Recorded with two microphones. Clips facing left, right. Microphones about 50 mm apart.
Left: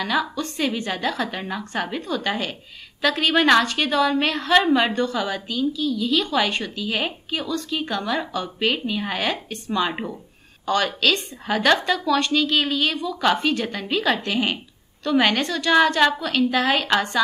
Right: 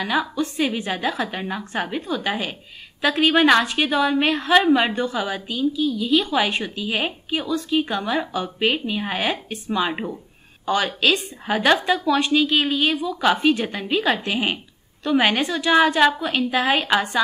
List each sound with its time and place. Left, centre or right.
0.0 s a woman's voice: centre